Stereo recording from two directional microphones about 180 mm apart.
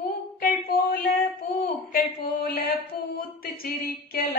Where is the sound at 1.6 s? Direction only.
55° left (ahead or behind).